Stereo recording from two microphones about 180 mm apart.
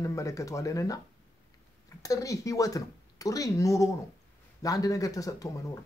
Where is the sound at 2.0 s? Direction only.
20° left (ahead or behind).